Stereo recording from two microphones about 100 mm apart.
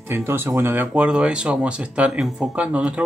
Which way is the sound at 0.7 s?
10° right (ahead or behind).